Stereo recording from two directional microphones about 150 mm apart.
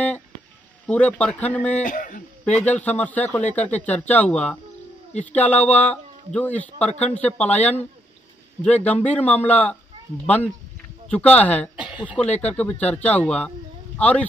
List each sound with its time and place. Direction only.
0.8 s speech: 10° left (ahead or behind)
1.8 s speech: 60° left (ahead or behind)
2.6 s speech: 10° left (ahead or behind)
11.9 s speech: 10° right (ahead or behind)
12.4 s speech: 10° left (ahead or behind)